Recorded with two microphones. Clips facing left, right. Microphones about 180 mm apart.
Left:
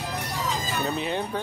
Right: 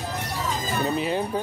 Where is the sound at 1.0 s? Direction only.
5° right (ahead or behind).